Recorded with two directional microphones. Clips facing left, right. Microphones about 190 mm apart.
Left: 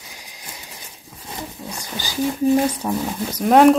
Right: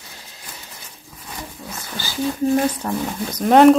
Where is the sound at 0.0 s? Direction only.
15° left (ahead or behind).